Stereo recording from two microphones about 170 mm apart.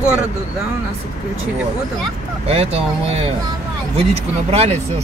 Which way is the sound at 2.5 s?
35° right (ahead or behind).